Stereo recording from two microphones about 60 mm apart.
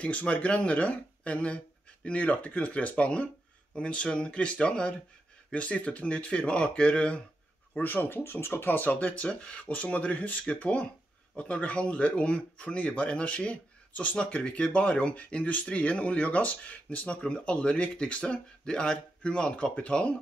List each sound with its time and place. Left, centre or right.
0.0 s speech: left
7.7 s speech: left